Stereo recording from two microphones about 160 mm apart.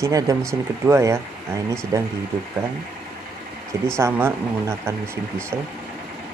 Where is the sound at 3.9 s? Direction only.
15° right (ahead or behind).